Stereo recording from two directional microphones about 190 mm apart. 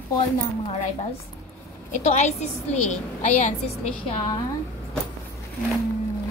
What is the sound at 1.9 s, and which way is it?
A woman's voice, 40° left (ahead or behind).